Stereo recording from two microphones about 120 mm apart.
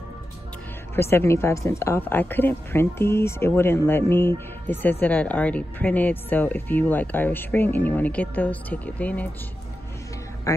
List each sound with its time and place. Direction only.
0.9 s a woman's voice: 20° left (ahead or behind)